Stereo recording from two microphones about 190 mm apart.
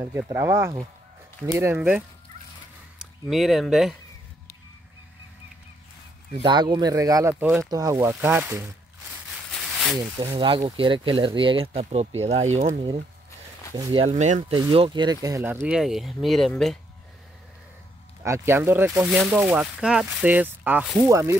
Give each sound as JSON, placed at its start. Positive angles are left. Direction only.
{"t": 0.0, "sound": "speech", "side_deg": -15}
{"t": 3.3, "sound": "speech", "side_deg": 0}
{"t": 6.4, "sound": "speech", "side_deg": -20}
{"t": 9.5, "sound": "a sound", "side_deg": 5}
{"t": 9.9, "sound": "speech", "side_deg": -20}
{"t": 14.5, "sound": "speech", "side_deg": -30}
{"t": 18.2, "sound": "speech", "side_deg": -15}